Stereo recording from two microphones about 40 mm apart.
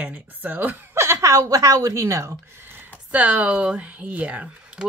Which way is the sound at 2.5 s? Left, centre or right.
Right.